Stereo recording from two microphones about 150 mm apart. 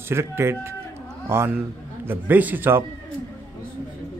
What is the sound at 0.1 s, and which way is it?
Speech, 15° right (ahead or behind).